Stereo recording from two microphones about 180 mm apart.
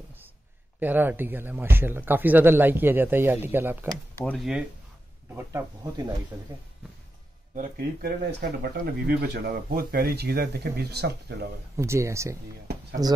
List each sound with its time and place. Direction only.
0.7 s speech: 10° right (ahead or behind)
4.2 s speech: 5° left (ahead or behind)
5.3 s speech: 20° right (ahead or behind)
7.5 s speech: 50° right (ahead or behind)
8.2 s speech: 70° right (ahead or behind)
9.0 s speech: 60° right (ahead or behind)
11.7 s speech: 15° right (ahead or behind)